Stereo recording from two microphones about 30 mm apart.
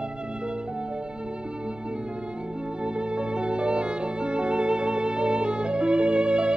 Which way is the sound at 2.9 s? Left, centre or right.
Right.